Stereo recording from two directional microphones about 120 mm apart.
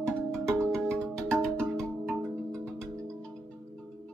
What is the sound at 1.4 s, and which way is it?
Music, 10° left (ahead or behind).